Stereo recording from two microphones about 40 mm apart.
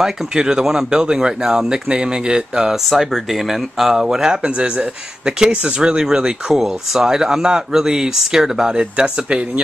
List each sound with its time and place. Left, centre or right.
0.0 s speech: centre
3.1 s speech: centre
8.7 s speech: right